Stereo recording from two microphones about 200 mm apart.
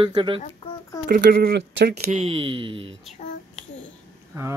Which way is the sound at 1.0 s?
50° right (ahead or behind).